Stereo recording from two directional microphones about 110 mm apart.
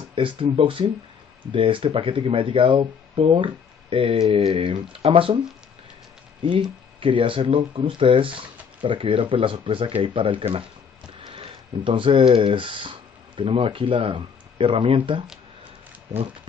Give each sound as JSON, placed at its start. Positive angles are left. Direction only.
{"t": 0.1, "sound": "speech", "side_deg": -50}
{"t": 7.0, "sound": "speech", "side_deg": -50}